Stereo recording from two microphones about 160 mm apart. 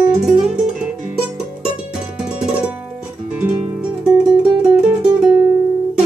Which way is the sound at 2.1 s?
5° right (ahead or behind).